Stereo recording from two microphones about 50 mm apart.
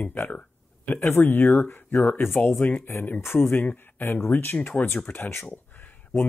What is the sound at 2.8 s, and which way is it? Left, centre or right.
Speech, left.